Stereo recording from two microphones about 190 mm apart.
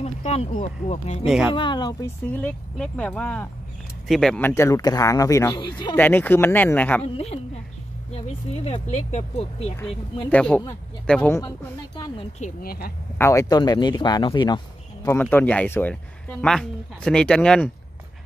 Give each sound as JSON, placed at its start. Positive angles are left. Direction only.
{"t": 0.0, "sound": "speech", "side_deg": 35}
{"t": 1.2, "sound": "speech", "side_deg": -5}
{"t": 1.5, "sound": "speech", "side_deg": 25}
{"t": 2.2, "sound": "speech", "side_deg": 10}
{"t": 5.9, "sound": "speech", "side_deg": 10}
{"t": 8.1, "sound": "speech", "side_deg": 30}
{"t": 10.3, "sound": "speech", "side_deg": 5}
{"t": 12.4, "sound": "speech", "side_deg": 45}
{"t": 13.2, "sound": "speech", "side_deg": 15}
{"t": 15.0, "sound": "speech", "side_deg": 10}